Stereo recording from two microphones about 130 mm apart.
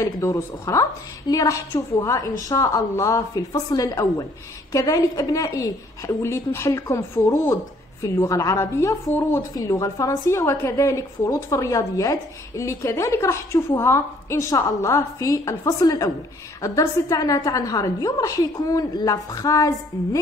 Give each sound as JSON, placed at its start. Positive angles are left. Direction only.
{"t": 0.0, "sound": "a woman's voice", "side_deg": 25}